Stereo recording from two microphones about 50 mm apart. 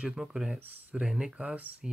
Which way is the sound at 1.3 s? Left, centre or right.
Right.